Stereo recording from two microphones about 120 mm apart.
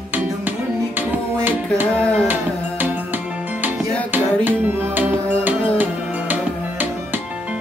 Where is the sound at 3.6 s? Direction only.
15° right (ahead or behind).